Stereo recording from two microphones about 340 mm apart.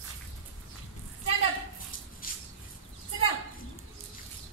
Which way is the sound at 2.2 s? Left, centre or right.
Left.